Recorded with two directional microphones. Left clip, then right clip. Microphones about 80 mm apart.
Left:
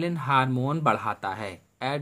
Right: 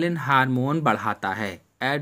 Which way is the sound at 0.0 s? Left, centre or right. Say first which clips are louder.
Right 3 dB; right.